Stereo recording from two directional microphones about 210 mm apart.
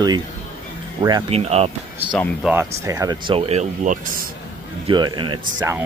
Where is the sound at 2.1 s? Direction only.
Centre (ahead or behind); by 4.2 s 35° right (ahead or behind).